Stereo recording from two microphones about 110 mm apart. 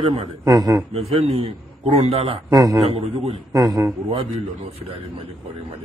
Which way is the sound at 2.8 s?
60° right (ahead or behind).